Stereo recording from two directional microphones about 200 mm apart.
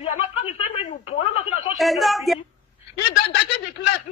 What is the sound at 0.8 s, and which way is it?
Telephone, 30° left (ahead or behind).